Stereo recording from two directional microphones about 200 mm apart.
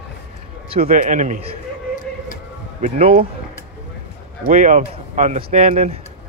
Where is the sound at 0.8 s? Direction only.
45° right (ahead or behind).